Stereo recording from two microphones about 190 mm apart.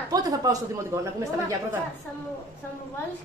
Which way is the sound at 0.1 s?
20° right (ahead or behind).